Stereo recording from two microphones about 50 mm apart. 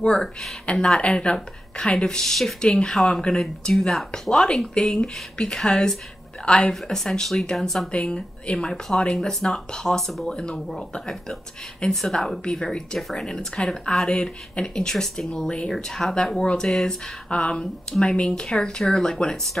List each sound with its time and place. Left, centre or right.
0.0 s a woman's voice: centre
7.9 s a woman's voice: left